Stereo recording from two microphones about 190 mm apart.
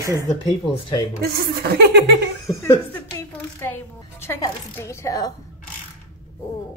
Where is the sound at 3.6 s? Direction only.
10° left (ahead or behind).